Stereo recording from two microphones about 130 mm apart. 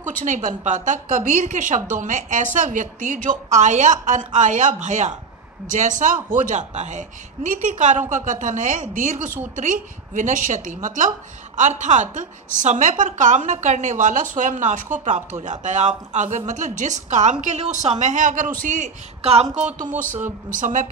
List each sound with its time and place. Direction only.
0.0 s a woman's voice: 80° right
3.3 s a woman's voice: 65° right (ahead or behind)
6.4 s a woman's voice: 65° right (ahead or behind); by 9.3 s 85° right
9.6 s a woman's voice: 75° right (ahead or behind)
11.5 s a woman's voice: 65° right (ahead or behind)
19.2 s speech: 50° right (ahead or behind)
19.9 s a woman's voice: 75° right (ahead or behind)
20.4 s a woman's voice: 85° right